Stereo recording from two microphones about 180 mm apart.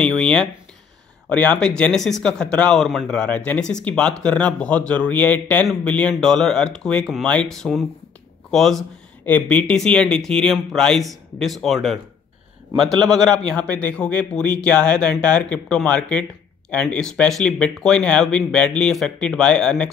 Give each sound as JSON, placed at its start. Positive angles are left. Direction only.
{"t": 0.0, "sound": "a man's voice", "side_deg": 5}